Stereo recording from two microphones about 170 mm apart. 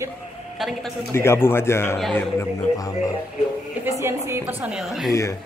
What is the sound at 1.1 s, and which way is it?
Speech, 15° left (ahead or behind).